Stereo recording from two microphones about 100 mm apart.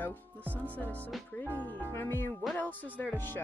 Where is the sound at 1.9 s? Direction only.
25° left (ahead or behind).